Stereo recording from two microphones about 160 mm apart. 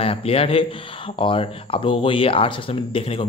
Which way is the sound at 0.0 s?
35° left (ahead or behind).